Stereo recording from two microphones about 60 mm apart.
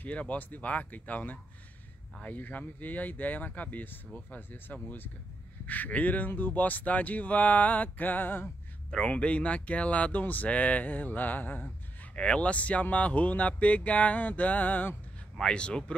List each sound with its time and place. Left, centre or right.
0.0 s speech: left
8.9 s speech: centre
15.3 s speech: centre